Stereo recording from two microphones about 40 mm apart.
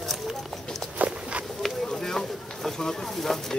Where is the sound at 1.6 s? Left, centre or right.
Centre.